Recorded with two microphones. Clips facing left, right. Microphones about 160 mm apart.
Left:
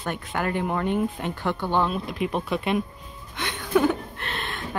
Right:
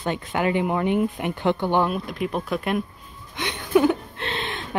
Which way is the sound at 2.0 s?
Centre (ahead or behind).